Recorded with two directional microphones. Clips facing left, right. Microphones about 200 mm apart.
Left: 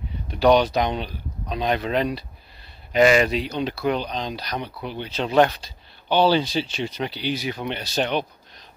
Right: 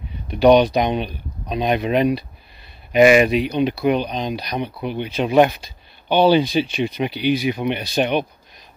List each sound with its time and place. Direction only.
0.3 s speech: 15° right (ahead or behind)